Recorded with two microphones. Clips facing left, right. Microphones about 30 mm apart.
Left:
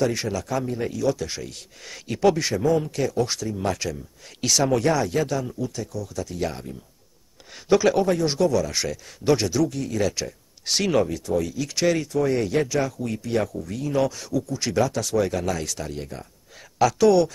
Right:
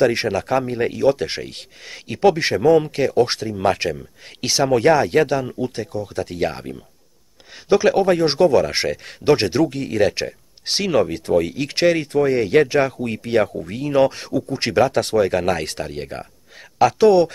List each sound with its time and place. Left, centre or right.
0.0 s a man's voice: right
2.1 s speech: right
4.8 s speech: right
7.7 s speech: centre
8.1 s speech: right
10.7 s speech: centre
11.1 s a man's voice: right